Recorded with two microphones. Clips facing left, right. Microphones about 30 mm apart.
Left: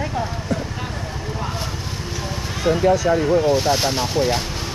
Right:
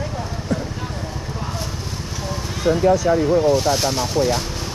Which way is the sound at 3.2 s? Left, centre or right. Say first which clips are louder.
Right 1 dB; centre.